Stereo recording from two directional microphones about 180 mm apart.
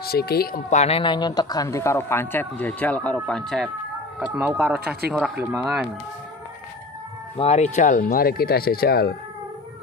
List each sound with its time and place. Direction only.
0.0 s speech: 60° left (ahead or behind)
0.7 s speech: 35° left (ahead or behind); by 3.7 s centre (ahead or behind)
4.2 s speech: 10° right (ahead or behind)
7.3 s speech: 40° left (ahead or behind); by 9.1 s 60° left (ahead or behind)